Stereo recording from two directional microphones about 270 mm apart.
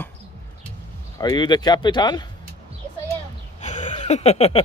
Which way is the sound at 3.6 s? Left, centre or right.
Left.